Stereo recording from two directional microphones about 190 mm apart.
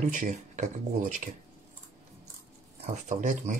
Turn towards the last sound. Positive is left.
turn(degrees=-40)  # may be behind; listen again after turning